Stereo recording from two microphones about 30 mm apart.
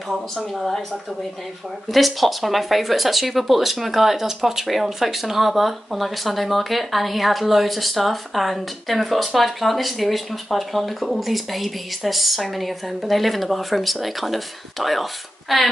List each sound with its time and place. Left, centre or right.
0.1 s speech: centre
1.9 s speech: centre